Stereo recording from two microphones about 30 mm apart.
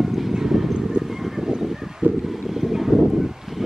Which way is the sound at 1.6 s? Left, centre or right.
Centre.